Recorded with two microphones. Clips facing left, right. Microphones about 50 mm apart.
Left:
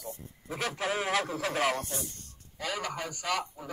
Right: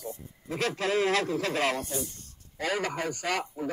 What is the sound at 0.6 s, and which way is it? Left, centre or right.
Speech, right.